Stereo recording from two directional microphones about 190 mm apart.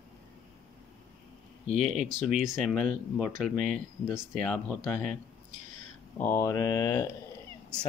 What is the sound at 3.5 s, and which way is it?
Speech, 45° right (ahead or behind).